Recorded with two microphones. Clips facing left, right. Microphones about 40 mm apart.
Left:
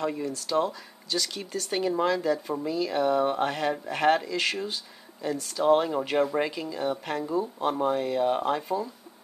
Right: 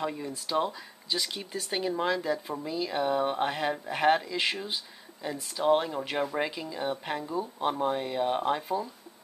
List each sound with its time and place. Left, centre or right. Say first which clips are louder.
0.2 s speech: left 3 dB; centre